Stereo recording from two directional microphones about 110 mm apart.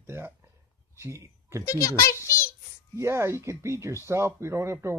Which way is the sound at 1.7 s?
25° left (ahead or behind).